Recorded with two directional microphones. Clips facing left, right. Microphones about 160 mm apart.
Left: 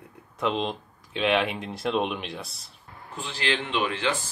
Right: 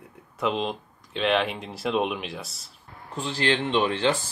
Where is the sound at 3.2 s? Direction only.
35° right (ahead or behind).